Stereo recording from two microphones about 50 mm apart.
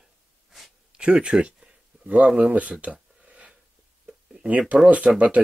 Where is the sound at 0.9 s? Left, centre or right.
Centre.